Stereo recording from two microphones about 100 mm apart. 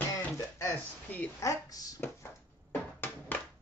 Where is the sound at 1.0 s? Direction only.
15° left (ahead or behind).